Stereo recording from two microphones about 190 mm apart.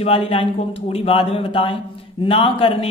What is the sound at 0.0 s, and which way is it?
Speech, 30° left (ahead or behind).